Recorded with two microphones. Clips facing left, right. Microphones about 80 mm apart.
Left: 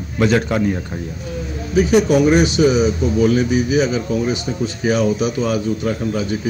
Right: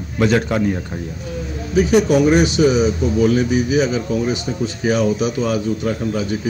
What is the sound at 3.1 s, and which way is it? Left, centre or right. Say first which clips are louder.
Speech: even; centre.